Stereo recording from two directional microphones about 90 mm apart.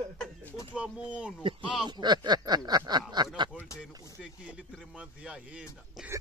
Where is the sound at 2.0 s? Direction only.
55° right (ahead or behind).